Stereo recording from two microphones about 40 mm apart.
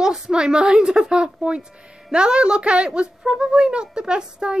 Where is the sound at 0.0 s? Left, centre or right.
Centre.